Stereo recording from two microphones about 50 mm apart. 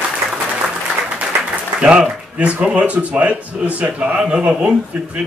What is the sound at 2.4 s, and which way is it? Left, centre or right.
A man's voice, right.